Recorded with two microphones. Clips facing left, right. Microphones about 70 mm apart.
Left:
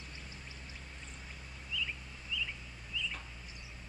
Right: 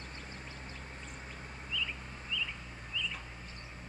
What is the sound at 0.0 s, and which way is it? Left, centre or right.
Vehicle, right.